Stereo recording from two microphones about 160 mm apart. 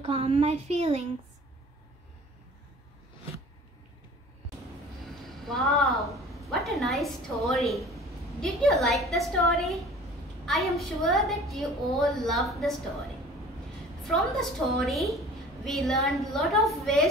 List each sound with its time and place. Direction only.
0.0 s speech: 40° right (ahead or behind)
5.2 s a woman's voice: centre (ahead or behind)
14.0 s a woman's voice: centre (ahead or behind)